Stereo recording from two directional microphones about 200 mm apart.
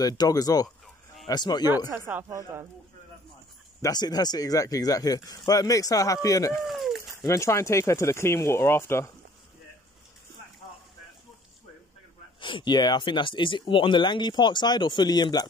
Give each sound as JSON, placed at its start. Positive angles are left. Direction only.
{"t": 0.0, "sound": "speech", "side_deg": 20}
{"t": 1.9, "sound": "speech", "side_deg": -10}
{"t": 3.8, "sound": "speech", "side_deg": 20}
{"t": 6.6, "sound": "dog", "side_deg": 0}
{"t": 7.2, "sound": "speech", "side_deg": 15}
{"t": 12.4, "sound": "speech", "side_deg": 25}